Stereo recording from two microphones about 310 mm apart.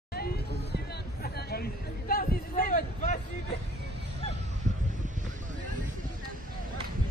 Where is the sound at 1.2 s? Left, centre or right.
Left.